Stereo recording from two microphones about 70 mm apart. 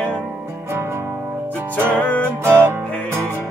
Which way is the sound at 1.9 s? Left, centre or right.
Left.